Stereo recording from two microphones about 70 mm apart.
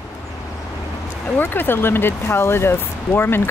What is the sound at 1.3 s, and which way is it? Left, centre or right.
Speech, left.